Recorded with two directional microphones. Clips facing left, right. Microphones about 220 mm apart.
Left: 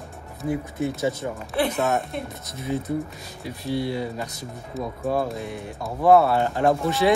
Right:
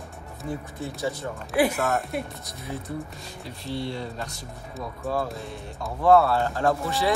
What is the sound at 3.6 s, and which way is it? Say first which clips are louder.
Speech: left 5 dB; 10° left (ahead or behind).